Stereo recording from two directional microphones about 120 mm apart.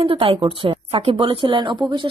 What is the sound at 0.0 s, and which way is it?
A woman's voice, 50° right (ahead or behind).